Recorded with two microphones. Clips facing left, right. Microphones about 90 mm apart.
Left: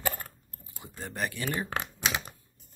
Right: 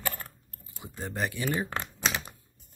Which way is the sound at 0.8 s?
15° right (ahead or behind).